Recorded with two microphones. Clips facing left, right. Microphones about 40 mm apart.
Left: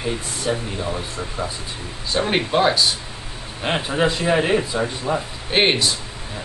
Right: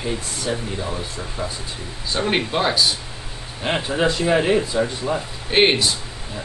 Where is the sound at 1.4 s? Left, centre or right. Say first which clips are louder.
Even; left.